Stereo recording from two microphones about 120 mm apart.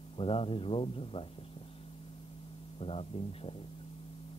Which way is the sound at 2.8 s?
50° left (ahead or behind).